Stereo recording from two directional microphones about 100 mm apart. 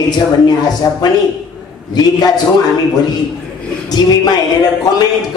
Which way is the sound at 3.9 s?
40° left (ahead or behind).